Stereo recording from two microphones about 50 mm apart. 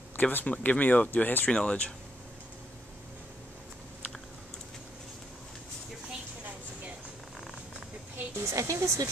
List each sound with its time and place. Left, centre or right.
0.2 s speech: left
1.5 s speech: left
8.4 s speech: right